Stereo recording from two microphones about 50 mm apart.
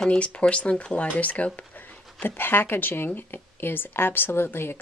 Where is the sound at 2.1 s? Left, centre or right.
Left.